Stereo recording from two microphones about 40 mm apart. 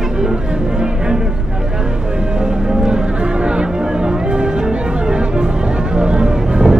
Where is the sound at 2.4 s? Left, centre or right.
Centre.